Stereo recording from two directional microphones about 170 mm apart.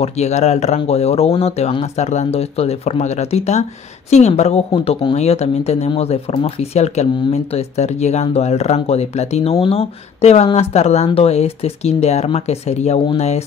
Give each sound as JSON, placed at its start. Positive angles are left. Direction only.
{"t": 0.0, "sound": "a woman's voice", "side_deg": 40}